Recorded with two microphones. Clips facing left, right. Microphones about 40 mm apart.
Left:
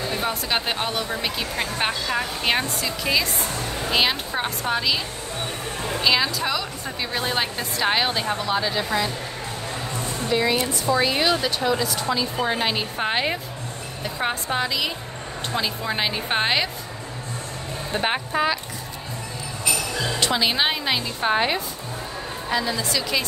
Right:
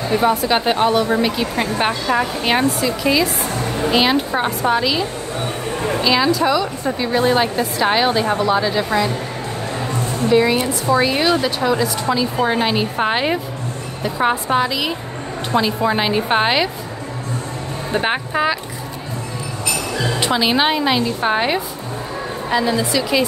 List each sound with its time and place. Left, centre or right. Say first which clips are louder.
0.3 s a woman's voice: right 8 dB; centre
6.0 s a woman's voice: right 5 dB; centre
10.3 s speech: right 6 dB; centre
17.9 s speech: right 4 dB; centre
20.3 s speech: right 7 dB; centre